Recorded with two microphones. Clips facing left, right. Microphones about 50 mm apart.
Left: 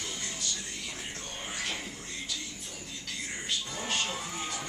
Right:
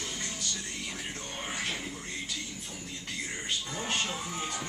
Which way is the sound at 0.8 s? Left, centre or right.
Centre.